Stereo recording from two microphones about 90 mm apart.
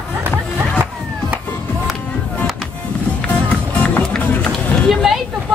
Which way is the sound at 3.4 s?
20° left (ahead or behind).